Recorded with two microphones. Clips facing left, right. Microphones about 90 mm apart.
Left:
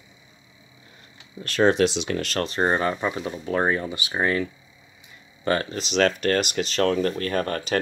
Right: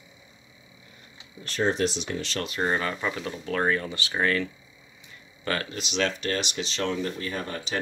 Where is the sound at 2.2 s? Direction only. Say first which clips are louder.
Left 5 dB; 45° left (ahead or behind); by 4.4 s 20° left (ahead or behind).